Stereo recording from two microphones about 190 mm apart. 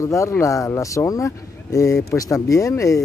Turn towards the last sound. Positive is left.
turn(degrees=15)  # may be behind; listen again after turning